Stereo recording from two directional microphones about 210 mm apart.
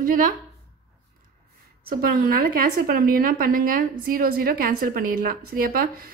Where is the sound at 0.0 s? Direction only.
40° right (ahead or behind).